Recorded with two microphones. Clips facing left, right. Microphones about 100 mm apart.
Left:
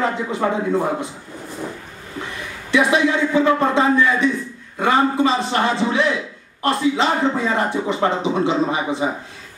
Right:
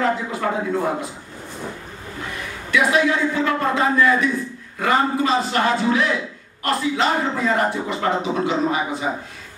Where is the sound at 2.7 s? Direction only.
25° left (ahead or behind).